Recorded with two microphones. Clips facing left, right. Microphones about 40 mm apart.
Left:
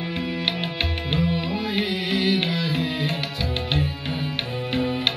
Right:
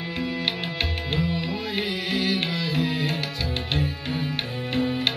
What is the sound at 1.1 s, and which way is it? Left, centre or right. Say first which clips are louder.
Music: left 3 dB; centre.